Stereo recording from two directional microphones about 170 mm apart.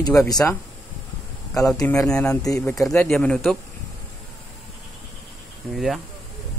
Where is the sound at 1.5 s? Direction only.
20° left (ahead or behind).